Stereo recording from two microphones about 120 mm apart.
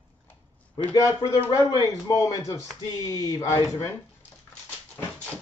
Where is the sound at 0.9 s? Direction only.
30° left (ahead or behind).